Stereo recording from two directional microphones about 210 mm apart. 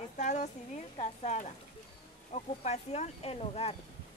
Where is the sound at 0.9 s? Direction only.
30° left (ahead or behind).